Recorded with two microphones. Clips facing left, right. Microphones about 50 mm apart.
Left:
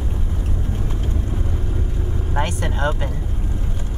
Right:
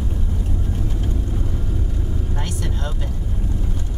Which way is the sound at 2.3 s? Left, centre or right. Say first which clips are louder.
Left 5 dB; left.